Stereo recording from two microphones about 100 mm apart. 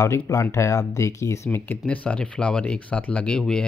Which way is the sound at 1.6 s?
15° left (ahead or behind).